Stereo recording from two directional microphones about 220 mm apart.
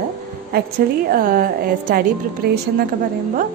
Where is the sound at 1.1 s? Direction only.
40° right (ahead or behind).